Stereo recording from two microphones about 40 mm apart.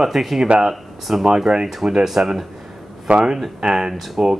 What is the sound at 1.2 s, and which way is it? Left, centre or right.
Speech, centre.